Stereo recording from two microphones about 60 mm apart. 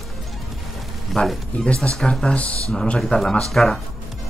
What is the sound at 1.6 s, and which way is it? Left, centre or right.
Speech, centre.